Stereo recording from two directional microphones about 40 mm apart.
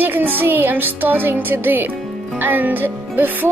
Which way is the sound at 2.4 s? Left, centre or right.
Right.